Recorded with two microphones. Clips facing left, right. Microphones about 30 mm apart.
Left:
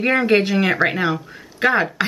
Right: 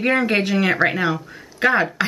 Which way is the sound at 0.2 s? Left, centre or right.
Centre.